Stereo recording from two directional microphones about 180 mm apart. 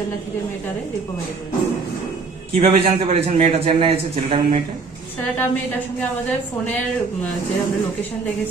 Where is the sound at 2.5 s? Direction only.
35° right (ahead or behind).